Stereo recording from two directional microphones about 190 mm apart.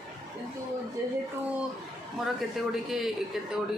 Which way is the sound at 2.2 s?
Centre (ahead or behind).